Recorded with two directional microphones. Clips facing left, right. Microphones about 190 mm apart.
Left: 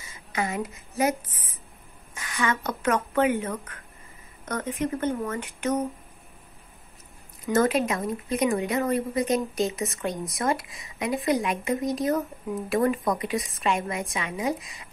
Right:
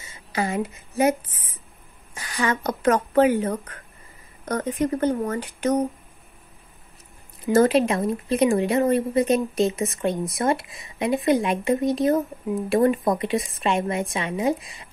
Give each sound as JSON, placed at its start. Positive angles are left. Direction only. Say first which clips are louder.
{"t": 0.1, "sound": "a woman's voice", "louder": "right 4 dB", "side_deg": -30}
{"t": 2.1, "sound": "speech", "louder": "right 3 dB", "side_deg": -35}
{"t": 7.5, "sound": "a woman's voice", "louder": "right 5 dB", "side_deg": -30}